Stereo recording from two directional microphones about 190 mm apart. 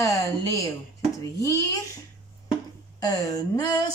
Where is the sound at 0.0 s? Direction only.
15° left (ahead or behind).